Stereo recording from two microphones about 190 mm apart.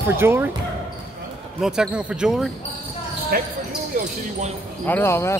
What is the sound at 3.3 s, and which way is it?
Speech, 50° right (ahead or behind).